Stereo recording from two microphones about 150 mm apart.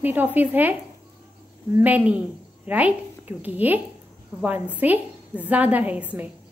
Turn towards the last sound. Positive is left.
turn(degrees=-10)  # may be behind; listen again after turning